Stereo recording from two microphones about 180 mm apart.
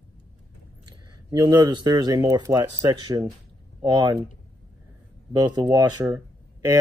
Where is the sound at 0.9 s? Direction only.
25° right (ahead or behind).